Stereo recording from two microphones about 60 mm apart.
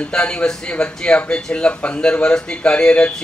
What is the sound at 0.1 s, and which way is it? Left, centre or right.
Speech, centre.